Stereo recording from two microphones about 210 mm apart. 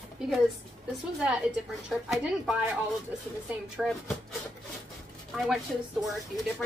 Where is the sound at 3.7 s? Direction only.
Centre (ahead or behind).